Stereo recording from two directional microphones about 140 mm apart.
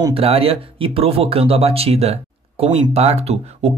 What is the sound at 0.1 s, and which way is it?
Speech, 45° right (ahead or behind).